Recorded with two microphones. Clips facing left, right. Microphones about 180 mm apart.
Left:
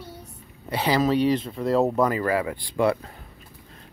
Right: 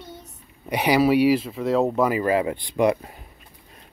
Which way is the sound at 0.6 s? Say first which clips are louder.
Right 3 dB; 15° right (ahead or behind).